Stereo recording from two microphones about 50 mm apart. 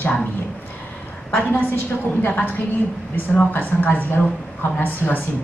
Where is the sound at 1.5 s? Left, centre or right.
Left.